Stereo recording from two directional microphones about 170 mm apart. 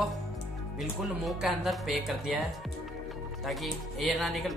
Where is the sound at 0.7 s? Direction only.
Centre (ahead or behind).